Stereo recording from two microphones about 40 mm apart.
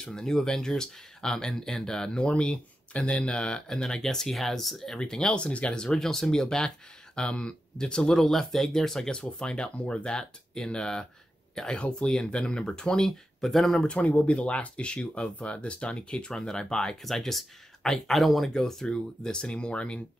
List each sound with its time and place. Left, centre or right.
0.0 s speech: centre; by 5.8 s left
5.8 s speech: centre
9.2 s speech: left
9.8 s speech: left
10.0 s speech: centre
11.8 s speech: left
13.0 s speech: centre
13.7 s speech: left
14.0 s speech: left; by 17.0 s centre
17.0 s speech: centre
18.1 s speech: centre
18.5 s speech: centre